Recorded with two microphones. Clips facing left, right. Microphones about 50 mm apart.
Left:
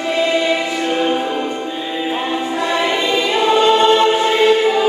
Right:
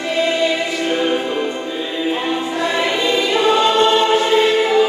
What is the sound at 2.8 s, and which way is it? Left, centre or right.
Choir, centre.